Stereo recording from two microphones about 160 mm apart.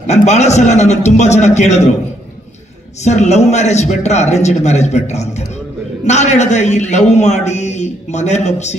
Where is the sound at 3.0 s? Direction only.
45° left (ahead or behind).